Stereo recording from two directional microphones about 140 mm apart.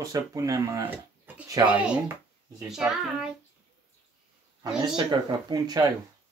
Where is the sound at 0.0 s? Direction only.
25° right (ahead or behind).